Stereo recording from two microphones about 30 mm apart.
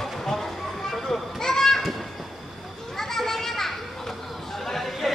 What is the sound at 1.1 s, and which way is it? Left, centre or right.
Children playing, centre.